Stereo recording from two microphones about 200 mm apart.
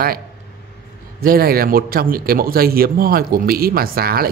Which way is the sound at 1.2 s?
50° right (ahead or behind).